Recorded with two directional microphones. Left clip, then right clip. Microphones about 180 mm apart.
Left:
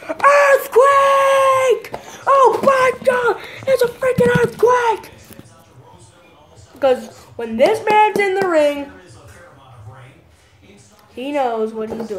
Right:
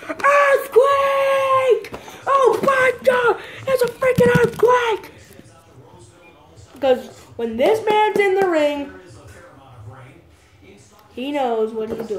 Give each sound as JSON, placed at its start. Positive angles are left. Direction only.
{"t": 0.0, "sound": "a sound", "side_deg": 5}
{"t": 6.8, "sound": "speech", "side_deg": 20}
{"t": 11.1, "sound": "speech", "side_deg": 15}